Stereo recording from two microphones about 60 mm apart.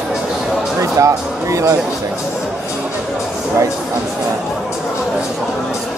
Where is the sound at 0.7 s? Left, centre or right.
Right.